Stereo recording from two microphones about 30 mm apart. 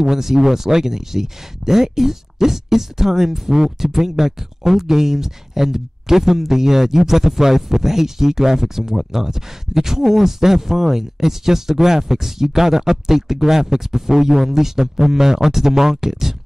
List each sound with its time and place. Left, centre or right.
0.0 s speech: centre